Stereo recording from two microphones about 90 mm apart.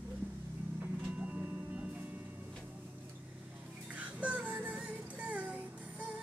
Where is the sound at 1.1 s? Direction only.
15° right (ahead or behind).